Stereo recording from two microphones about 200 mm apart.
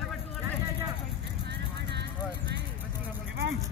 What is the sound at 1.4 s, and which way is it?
Vehicle, 60° right (ahead or behind).